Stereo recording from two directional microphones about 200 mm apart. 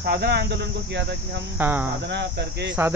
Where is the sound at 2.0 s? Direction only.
60° right (ahead or behind).